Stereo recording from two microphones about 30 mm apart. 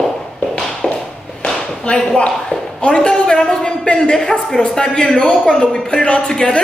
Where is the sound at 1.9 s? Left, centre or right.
Left.